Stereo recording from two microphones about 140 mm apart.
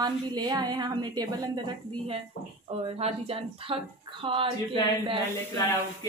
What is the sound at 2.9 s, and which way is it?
Speech, 45° right (ahead or behind).